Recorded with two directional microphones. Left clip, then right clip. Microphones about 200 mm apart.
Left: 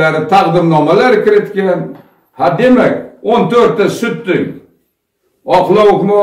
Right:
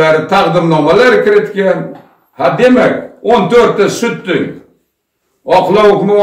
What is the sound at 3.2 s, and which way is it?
A man's voice, 5° left (ahead or behind).